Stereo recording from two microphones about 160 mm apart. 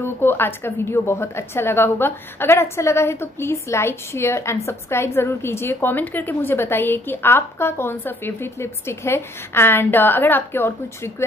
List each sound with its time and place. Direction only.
0.0 s a woman's voice: 15° left (ahead or behind)